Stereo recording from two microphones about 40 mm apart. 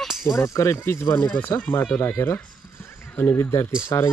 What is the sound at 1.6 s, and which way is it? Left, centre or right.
Speech, left.